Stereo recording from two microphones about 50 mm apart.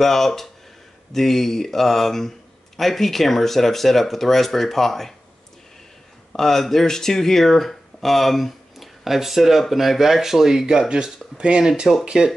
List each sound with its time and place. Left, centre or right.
0.0 s speech: centre
6.3 s speech: centre
10.9 s speech: centre